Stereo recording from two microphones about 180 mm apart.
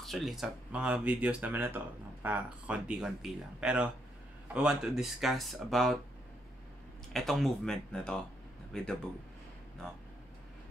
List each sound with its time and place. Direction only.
0.0 s speech: centre (ahead or behind)
7.1 s speech: centre (ahead or behind)